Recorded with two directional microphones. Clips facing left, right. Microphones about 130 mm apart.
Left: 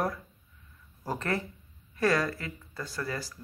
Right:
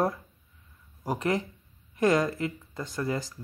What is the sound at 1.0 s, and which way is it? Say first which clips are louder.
Speech: right 4 dB; 15° right (ahead or behind).